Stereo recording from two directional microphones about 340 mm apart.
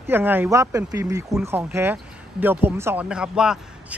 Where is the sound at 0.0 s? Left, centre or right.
Centre.